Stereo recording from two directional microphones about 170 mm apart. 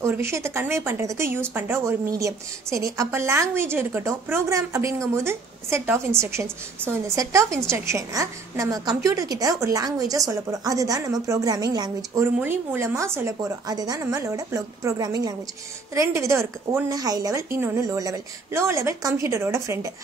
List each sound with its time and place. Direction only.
0.0 s a woman's voice: 15° right (ahead or behind)